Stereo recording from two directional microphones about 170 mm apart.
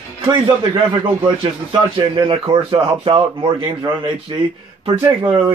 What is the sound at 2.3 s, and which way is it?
Speech, 30° right (ahead or behind).